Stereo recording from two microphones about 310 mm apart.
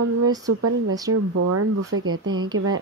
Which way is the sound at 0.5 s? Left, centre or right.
Right.